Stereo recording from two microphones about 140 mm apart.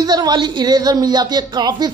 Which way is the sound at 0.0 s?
30° right (ahead or behind).